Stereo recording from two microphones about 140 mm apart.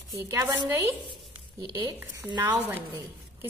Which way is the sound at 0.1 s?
25° right (ahead or behind).